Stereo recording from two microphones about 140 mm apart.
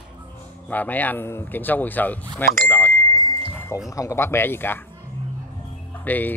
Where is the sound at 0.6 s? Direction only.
10° left (ahead or behind).